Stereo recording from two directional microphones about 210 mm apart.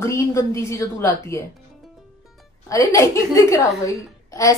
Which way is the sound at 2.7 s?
15° left (ahead or behind).